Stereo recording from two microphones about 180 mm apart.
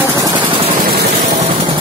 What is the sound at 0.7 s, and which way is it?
Vehicle, 50° right (ahead or behind).